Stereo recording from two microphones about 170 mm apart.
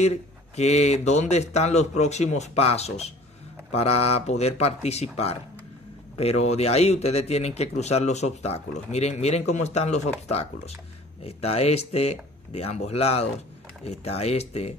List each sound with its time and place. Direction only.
0.0 s speech: 40° left (ahead or behind)